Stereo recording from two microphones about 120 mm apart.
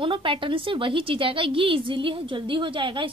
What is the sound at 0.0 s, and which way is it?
A woman's voice, 45° right (ahead or behind).